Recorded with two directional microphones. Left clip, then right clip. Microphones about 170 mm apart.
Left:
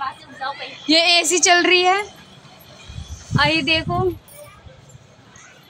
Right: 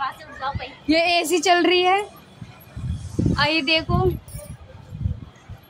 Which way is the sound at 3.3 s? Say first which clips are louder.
Left 3 dB; 15° left (ahead or behind).